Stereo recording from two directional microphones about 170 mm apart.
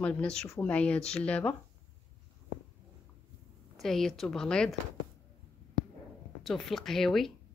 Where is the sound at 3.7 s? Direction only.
Centre (ahead or behind).